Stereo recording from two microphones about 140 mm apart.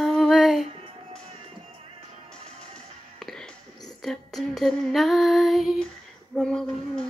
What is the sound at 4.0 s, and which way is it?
Female singing, centre (ahead or behind).